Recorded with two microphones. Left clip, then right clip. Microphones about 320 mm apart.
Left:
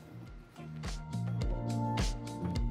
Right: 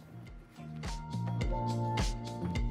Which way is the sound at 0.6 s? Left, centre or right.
Centre.